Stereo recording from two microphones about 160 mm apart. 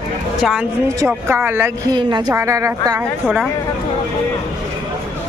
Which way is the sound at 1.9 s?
30° right (ahead or behind).